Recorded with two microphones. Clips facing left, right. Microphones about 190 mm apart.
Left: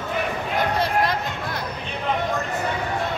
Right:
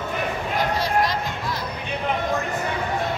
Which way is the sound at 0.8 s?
55° left (ahead or behind).